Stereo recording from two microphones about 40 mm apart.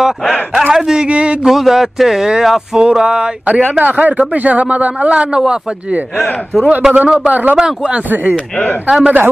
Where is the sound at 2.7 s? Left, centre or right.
Centre.